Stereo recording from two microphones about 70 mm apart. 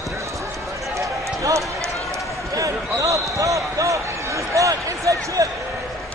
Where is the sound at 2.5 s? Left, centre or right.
Right.